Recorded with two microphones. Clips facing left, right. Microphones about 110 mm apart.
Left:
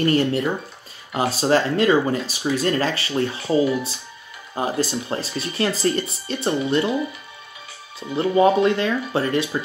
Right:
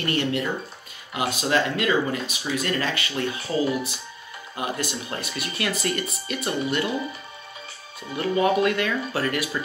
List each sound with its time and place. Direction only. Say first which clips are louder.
0.0 s speech: left 6 dB; 35° left (ahead or behind)
8.2 s speech: left 5 dB; 25° left (ahead or behind)